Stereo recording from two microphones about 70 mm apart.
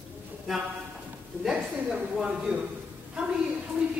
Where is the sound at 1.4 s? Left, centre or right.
Centre.